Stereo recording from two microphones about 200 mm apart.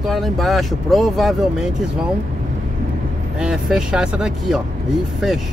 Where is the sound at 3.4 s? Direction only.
5° right (ahead or behind).